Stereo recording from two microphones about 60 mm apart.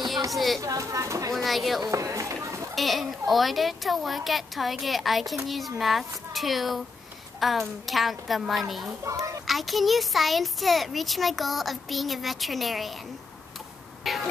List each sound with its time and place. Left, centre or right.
0.3 s speech: centre
0.6 s speech: right
1.3 s speech: centre
1.8 s run: right
2.7 s speech: centre
9.0 s a child's voice: right
9.5 s speech: centre
14.0 s cough: centre